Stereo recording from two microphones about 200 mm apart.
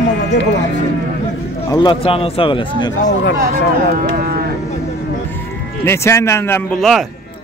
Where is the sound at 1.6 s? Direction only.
20° left (ahead or behind).